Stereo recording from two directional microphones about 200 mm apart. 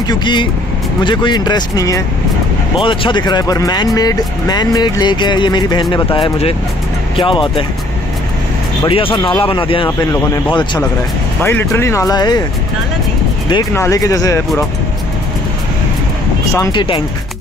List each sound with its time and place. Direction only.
0.1 s speech: 25° left (ahead or behind)
8.8 s speech: 25° left (ahead or behind)
11.4 s speech: 10° left (ahead or behind)
13.5 s speech: 20° left (ahead or behind)
16.5 s speech: 20° left (ahead or behind)